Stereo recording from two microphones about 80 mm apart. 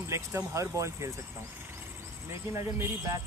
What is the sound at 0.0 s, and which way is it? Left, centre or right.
Speech, right.